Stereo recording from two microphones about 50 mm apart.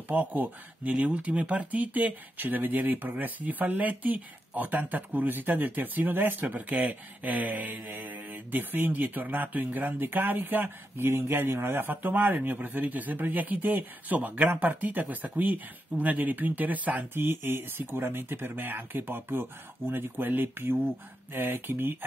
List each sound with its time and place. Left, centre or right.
0.1 s speech: right
17.1 s speech: right